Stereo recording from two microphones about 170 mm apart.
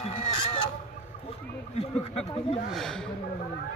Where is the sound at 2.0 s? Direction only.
35° left (ahead or behind).